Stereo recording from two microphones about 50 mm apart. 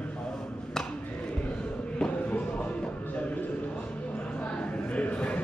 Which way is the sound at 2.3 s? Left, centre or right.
Left.